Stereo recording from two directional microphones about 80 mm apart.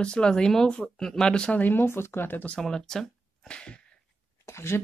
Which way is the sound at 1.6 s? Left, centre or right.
Left.